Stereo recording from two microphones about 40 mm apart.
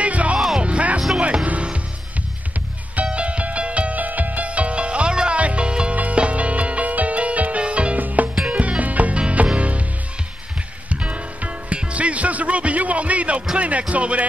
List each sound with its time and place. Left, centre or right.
0.0 s music: right
3.1 s music: right
8.0 s music: right
10.9 s music: right
13.6 s speech: right